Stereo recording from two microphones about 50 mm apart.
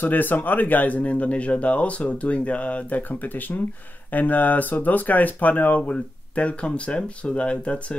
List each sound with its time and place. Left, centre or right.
0.0 s speech: left